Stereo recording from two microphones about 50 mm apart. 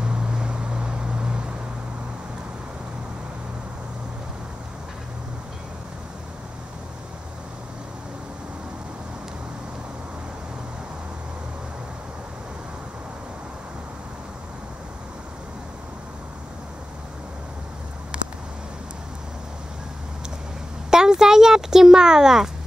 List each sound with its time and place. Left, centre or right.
0.0 s vehicle: centre
20.9 s speech: centre